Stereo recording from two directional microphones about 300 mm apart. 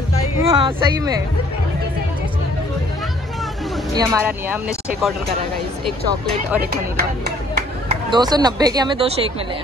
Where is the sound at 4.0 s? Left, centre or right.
Centre.